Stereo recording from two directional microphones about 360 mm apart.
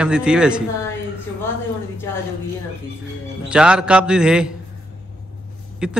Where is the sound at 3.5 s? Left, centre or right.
Centre.